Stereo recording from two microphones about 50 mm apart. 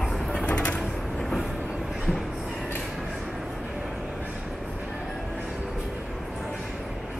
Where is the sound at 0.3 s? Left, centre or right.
Left.